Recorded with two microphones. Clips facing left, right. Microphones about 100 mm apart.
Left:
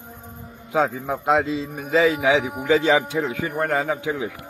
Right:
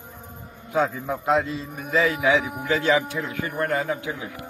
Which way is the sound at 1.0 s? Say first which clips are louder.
Left 2 dB; 80° left.